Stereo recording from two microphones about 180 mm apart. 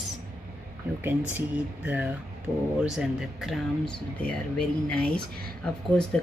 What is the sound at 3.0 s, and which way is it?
Speech, centre (ahead or behind).